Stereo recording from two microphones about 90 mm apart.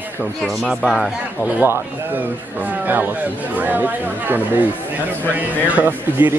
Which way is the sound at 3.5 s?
20° right (ahead or behind).